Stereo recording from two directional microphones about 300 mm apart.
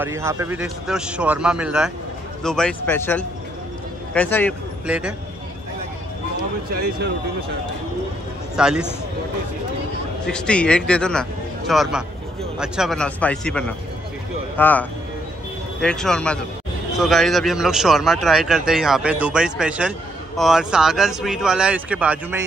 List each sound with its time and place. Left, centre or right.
0.0 s a man's voice: centre
6.7 s speech: right
8.5 s a man's voice: centre
10.2 s a man's voice: centre